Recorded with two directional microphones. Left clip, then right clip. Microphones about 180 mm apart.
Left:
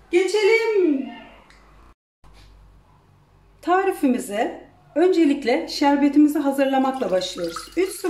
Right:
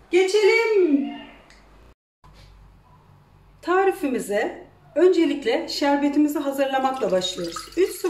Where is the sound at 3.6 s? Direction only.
35° left (ahead or behind).